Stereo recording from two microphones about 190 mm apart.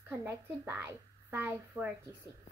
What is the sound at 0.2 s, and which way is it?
A woman's voice, 15° right (ahead or behind).